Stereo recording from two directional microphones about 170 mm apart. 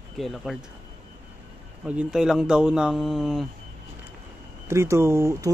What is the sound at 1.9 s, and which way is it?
Speech, 5° right (ahead or behind).